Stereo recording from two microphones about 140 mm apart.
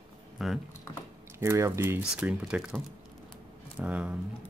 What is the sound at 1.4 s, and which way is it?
Speech, 20° right (ahead or behind).